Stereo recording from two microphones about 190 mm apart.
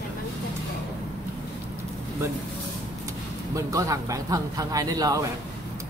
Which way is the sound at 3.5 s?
15° right (ahead or behind).